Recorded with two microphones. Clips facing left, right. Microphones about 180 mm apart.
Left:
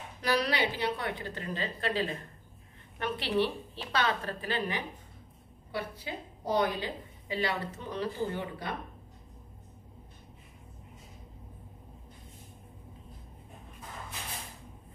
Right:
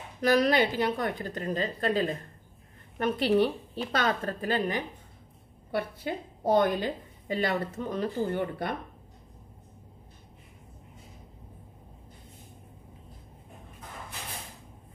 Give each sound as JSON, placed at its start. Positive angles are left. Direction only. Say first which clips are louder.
{"t": 0.2, "sound": "a woman's voice", "louder": "right 6 dB", "side_deg": -45}